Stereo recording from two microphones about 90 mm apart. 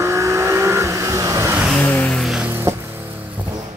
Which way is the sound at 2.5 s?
25° right (ahead or behind).